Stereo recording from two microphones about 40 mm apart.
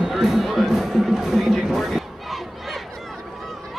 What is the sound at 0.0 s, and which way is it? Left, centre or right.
Music, centre.